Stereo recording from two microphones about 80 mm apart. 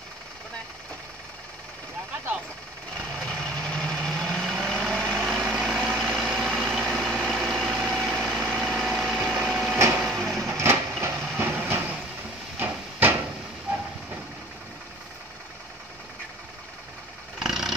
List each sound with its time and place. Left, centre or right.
3.2 s vehicle: centre
5.3 s vehicle: centre
5.9 s vehicle: centre
8.7 s light engine: centre
9.5 s printer: centre
10.0 s vehicle: centre
10.5 s a sound: right
11.3 s train: right
12.5 s a sound: right
17.4 s vehicle: centre